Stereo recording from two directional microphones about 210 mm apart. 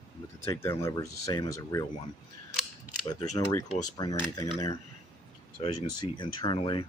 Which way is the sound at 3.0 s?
15° left (ahead or behind).